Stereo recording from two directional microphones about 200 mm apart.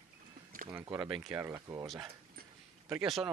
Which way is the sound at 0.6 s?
20° right (ahead or behind).